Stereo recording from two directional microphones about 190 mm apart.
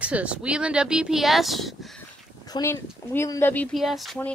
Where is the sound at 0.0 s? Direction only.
5° right (ahead or behind).